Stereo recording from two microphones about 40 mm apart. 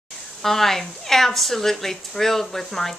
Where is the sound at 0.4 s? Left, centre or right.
Centre.